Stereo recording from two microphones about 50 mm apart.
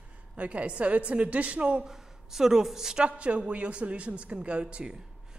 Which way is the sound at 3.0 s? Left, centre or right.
Right.